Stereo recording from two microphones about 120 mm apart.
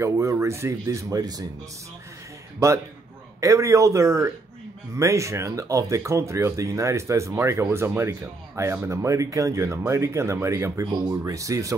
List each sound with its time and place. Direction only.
0.0 s speech: 25° right (ahead or behind)
3.3 s speech: 25° right (ahead or behind)